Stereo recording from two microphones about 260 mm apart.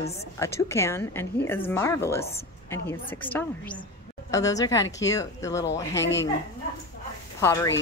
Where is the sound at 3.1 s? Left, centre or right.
Centre.